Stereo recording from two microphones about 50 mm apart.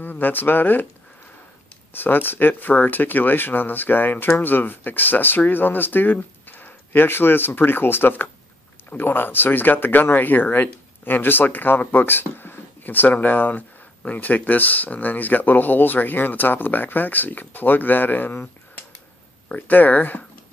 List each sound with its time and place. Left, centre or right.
0.0 s speech: left
2.0 s speech: left